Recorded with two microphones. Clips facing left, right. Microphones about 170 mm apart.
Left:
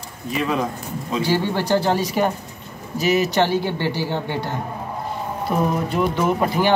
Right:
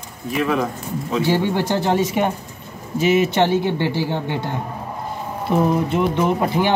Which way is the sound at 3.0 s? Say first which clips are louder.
Right 2 dB; 35° left (ahead or behind).